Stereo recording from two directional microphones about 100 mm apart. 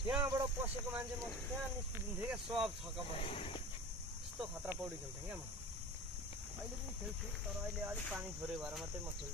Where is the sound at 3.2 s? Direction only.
70° left (ahead or behind).